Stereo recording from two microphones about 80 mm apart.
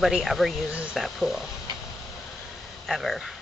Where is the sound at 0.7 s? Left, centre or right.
Centre.